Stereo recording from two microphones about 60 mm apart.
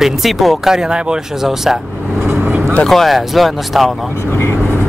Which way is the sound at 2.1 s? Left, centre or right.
Right.